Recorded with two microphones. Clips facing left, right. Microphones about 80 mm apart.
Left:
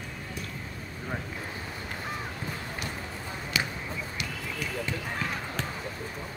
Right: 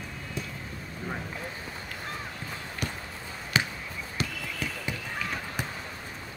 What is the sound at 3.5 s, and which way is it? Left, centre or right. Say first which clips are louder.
Basketball bounce: right 3 dB; right.